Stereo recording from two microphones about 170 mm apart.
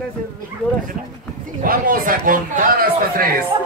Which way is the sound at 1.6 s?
55° right (ahead or behind).